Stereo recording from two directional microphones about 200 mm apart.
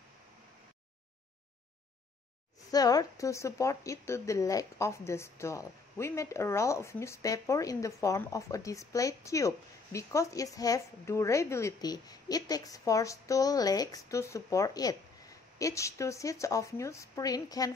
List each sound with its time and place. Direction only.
2.7 s a woman's voice: 20° left (ahead or behind)